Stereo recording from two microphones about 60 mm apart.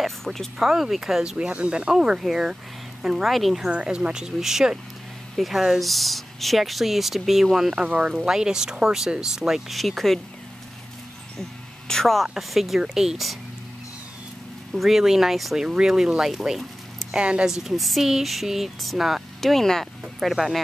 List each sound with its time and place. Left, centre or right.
0.0 s speech: centre
3.7 s speech: centre
7.7 s speech: centre
11.9 s speech: centre
14.7 s speech: centre
17.1 s speech: centre
20.2 s speech: centre